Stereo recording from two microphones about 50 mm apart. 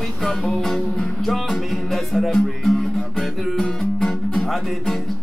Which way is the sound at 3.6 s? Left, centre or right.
Centre.